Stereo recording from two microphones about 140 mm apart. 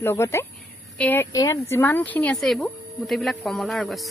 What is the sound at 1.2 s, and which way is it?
Speech, 25° left (ahead or behind).